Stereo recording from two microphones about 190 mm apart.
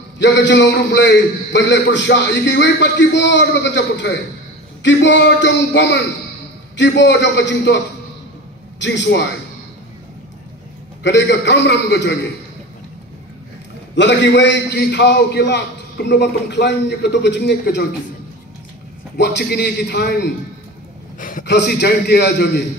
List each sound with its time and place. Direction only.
0.2 s a man's voice: 70° left (ahead or behind)
11.0 s a man's voice: 65° left (ahead or behind)
13.9 s a man's voice: 65° left (ahead or behind)
19.1 s a man's voice: 60° left (ahead or behind)
21.2 s a man's voice: 45° left (ahead or behind)
21.5 s a man's voice: 60° left (ahead or behind)